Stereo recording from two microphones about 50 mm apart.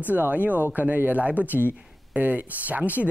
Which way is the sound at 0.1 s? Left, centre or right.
Right.